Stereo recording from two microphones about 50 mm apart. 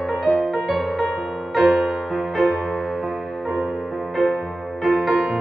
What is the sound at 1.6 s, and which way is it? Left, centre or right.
Music, centre.